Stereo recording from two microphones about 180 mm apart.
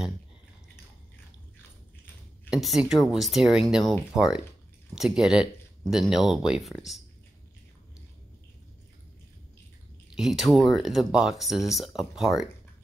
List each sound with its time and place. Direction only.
2.5 s speech: 5° right (ahead or behind)
10.0 s speech: 5° right (ahead or behind)